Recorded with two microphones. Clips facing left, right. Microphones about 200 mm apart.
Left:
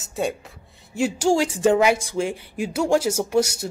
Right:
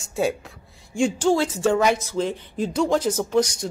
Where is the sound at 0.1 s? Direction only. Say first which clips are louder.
Right 2 dB; centre (ahead or behind).